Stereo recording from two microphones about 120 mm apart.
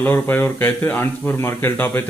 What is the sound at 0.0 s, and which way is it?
A man's voice, 15° left (ahead or behind).